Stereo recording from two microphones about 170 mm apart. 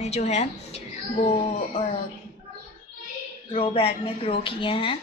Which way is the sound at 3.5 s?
30° left (ahead or behind).